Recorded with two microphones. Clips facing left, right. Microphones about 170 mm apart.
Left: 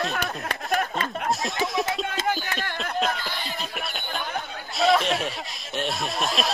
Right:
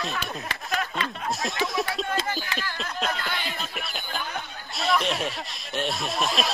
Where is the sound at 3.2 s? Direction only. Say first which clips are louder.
Right 1 dB; 65° right (ahead or behind).